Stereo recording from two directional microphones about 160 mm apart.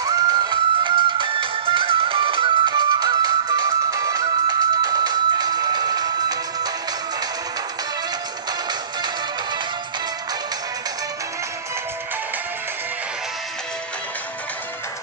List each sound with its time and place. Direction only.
0.0 s music: 25° right (ahead or behind)